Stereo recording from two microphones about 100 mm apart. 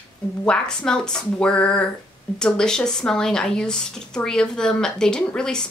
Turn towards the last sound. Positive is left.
turn(degrees=10)  # may be behind; listen again after turning